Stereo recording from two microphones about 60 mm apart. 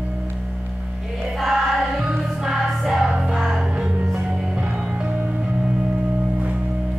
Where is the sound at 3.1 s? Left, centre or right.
Centre.